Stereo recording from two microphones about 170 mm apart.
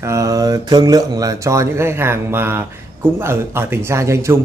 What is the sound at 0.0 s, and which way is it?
Speech, 20° right (ahead or behind).